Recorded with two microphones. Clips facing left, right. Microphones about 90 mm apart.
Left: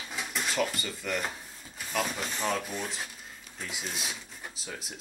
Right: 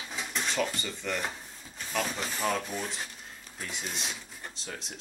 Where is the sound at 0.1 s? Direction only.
5° left (ahead or behind).